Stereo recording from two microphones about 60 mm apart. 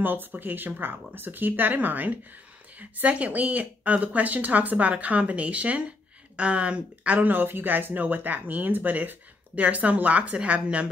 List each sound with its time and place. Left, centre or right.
0.0 s speech: right
7.3 s speech: right